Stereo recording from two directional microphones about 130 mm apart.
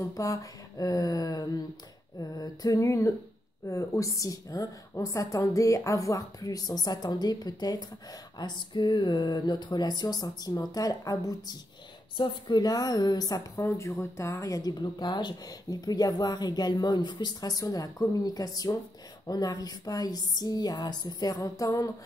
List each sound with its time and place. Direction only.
0.0 s a woman's voice: 25° left (ahead or behind)